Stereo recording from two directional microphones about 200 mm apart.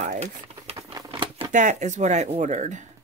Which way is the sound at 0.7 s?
20° right (ahead or behind).